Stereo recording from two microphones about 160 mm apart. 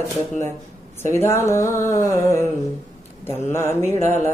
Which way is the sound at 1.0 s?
15° left (ahead or behind).